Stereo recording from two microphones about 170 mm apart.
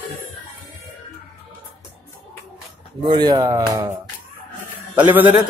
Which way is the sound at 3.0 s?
25° right (ahead or behind).